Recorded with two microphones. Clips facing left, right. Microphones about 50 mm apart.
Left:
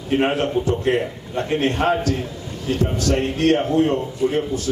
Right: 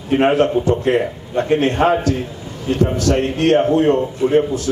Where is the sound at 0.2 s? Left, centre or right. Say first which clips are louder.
Right 8 dB; right.